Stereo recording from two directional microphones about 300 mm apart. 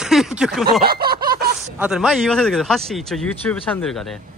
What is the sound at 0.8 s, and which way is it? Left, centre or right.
Snicker, right.